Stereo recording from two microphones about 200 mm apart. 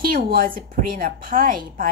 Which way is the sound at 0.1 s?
50° right (ahead or behind).